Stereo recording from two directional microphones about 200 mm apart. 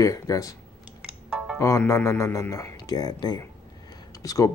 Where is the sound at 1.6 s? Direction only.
15° left (ahead or behind).